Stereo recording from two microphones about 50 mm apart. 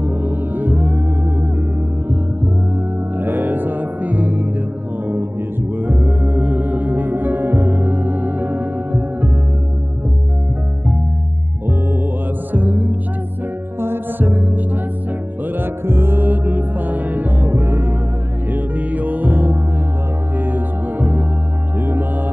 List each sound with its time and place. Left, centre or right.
0.0 s music: right
3.2 s music: right
5.8 s music: right
12.5 s music: right
13.7 s music: right
18.5 s music: right